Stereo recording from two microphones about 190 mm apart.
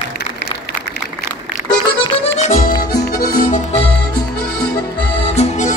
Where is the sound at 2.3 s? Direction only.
35° left (ahead or behind).